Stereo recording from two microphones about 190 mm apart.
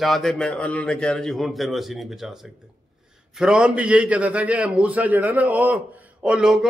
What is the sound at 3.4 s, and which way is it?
A man's voice, 5° right (ahead or behind).